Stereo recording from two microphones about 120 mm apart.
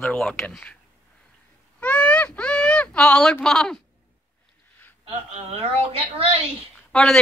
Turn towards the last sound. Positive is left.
turn(degrees=5)  # may be behind; listen again after turning